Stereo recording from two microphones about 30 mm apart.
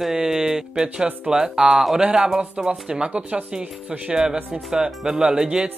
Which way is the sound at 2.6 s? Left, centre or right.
Right.